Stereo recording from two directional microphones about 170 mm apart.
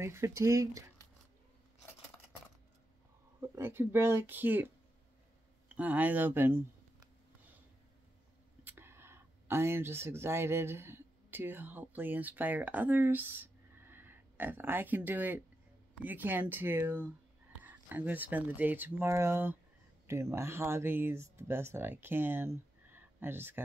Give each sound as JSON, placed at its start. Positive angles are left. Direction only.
{"t": 0.0, "sound": "speech", "side_deg": -15}
{"t": 3.3, "sound": "speech", "side_deg": -15}
{"t": 8.6, "sound": "speech", "side_deg": -15}